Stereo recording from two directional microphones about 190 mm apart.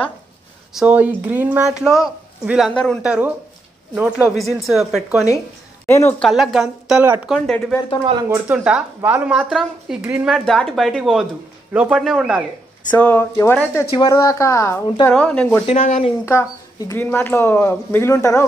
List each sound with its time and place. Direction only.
0.7 s speech: 10° right (ahead or behind)
5.9 s speech: 10° left (ahead or behind)
12.9 s speech: 10° left (ahead or behind)
15.0 s speech: 5° left (ahead or behind)
15.6 s speech: 40° left (ahead or behind)
16.3 s speech: 15° left (ahead or behind)